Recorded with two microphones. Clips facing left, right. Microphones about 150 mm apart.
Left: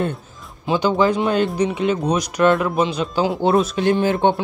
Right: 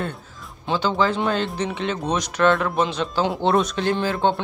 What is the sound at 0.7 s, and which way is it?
Speech, 15° left (ahead or behind).